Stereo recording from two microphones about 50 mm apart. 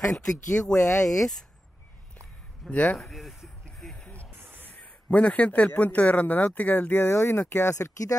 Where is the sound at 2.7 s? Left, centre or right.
Left.